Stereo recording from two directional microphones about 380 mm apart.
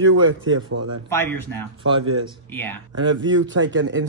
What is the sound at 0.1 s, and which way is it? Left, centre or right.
Speech, right.